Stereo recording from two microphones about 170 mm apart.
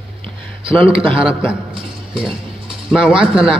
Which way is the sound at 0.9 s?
30° right (ahead or behind).